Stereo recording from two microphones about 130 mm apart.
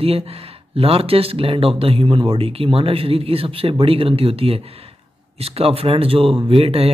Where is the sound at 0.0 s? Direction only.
50° right (ahead or behind).